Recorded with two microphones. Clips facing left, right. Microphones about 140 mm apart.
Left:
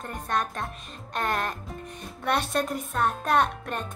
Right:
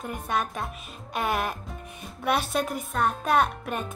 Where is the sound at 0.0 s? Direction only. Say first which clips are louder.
Even; 5° right (ahead or behind).